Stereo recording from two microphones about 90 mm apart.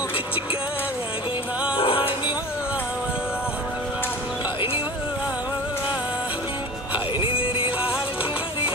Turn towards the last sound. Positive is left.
turn(degrees=85)